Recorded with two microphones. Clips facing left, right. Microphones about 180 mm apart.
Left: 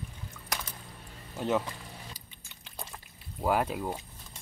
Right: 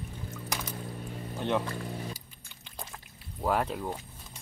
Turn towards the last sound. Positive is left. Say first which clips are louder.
# left 1 dB
turn(degrees=5)  # may be behind; listen again after turning